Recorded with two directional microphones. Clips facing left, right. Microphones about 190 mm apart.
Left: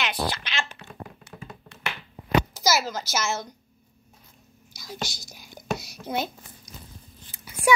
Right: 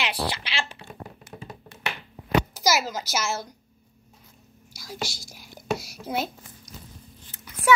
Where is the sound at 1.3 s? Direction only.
25° right (ahead or behind).